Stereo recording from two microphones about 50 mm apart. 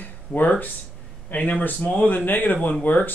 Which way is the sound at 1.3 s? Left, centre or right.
Left.